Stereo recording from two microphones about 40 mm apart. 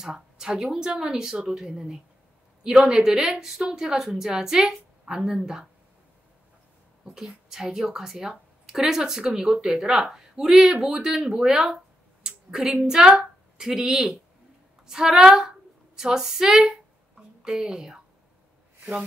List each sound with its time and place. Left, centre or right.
0.0 s a woman's voice: centre
7.2 s a woman's voice: centre